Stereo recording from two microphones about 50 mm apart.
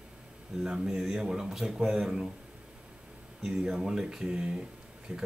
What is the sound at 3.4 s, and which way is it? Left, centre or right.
Speech, centre.